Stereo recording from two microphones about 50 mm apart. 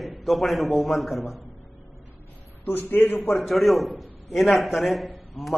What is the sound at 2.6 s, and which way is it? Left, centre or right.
Speech, left.